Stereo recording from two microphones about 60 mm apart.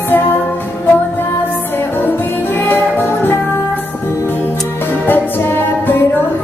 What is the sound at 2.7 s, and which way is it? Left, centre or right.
Music, left.